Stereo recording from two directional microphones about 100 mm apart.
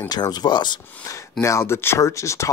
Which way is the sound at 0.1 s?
45° left (ahead or behind).